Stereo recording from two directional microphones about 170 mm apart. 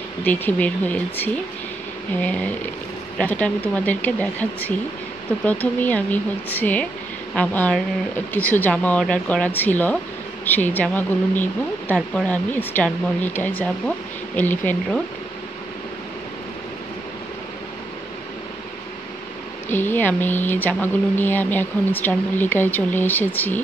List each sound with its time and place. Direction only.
0.2 s speech: 10° left (ahead or behind)
19.7 s speech: 10° left (ahead or behind)